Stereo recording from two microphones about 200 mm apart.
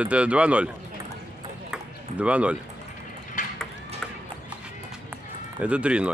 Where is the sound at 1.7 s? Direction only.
5° right (ahead or behind).